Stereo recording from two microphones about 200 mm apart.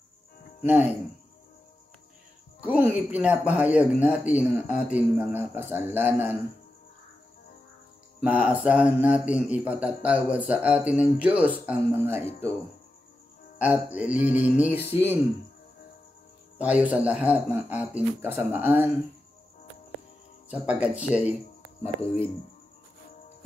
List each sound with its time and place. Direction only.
0.7 s a man's voice: 5° right (ahead or behind)
2.6 s a man's voice: 10° right (ahead or behind)
8.2 s a man's voice: 5° right (ahead or behind)
13.6 s a man's voice: 5° right (ahead or behind)
16.5 s a man's voice: 5° right (ahead or behind)
20.4 s a man's voice: 5° right (ahead or behind)
22.0 s speech: 30° left (ahead or behind)